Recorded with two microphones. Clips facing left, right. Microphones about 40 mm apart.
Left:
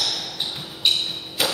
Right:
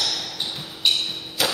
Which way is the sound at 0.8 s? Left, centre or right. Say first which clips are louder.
Even; centre.